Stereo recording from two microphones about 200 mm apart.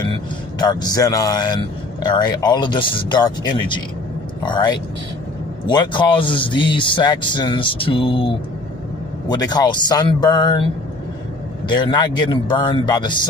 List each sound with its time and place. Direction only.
0.6 s speech: 20° left (ahead or behind)